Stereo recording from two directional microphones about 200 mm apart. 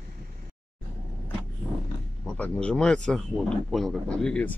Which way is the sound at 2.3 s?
5° left (ahead or behind).